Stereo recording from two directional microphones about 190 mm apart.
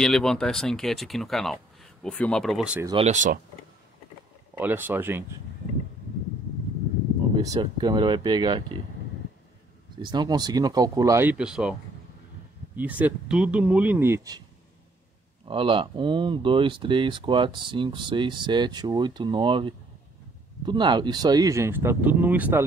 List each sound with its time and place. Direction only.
0.0 s speech: 5° left (ahead or behind)
3.0 s speech: 40° right (ahead or behind)
4.6 s speech: 10° right (ahead or behind)
7.3 s speech: 20° right (ahead or behind)
10.0 s speech: 20° right (ahead or behind); by 11.7 s 5° right (ahead or behind)
12.7 s speech: 10° right (ahead or behind)
15.4 s speech: 25° right (ahead or behind); by 22.6 s 10° right (ahead or behind)